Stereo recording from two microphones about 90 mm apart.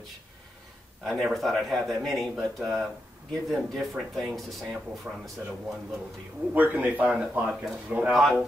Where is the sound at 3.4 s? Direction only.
Centre (ahead or behind).